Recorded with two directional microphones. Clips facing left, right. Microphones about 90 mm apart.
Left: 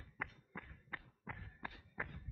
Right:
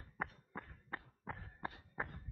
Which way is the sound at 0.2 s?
30° right (ahead or behind).